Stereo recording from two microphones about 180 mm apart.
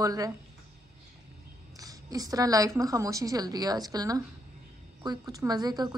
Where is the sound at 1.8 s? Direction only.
20° right (ahead or behind).